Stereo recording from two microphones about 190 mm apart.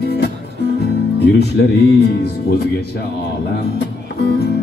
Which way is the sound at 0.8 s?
60° left (ahead or behind).